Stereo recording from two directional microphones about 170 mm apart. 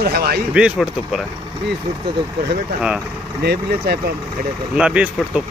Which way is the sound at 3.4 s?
70° right (ahead or behind).